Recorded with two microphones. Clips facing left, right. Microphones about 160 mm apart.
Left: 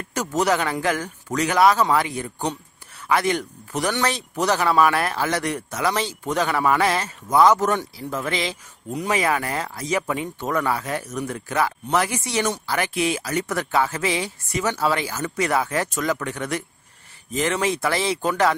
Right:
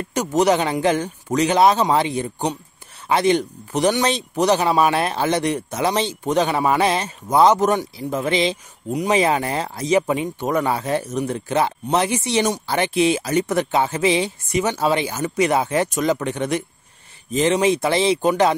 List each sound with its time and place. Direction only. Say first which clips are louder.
0.1 s speech: right 4 dB; 20° right (ahead or behind)